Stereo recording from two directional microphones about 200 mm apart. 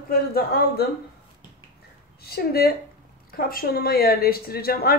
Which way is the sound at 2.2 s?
50° left (ahead or behind).